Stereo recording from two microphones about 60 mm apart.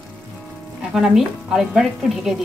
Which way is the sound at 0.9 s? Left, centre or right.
Centre.